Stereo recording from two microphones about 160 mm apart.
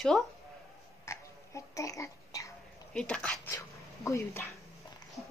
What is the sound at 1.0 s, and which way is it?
Babbling, 20° left (ahead or behind).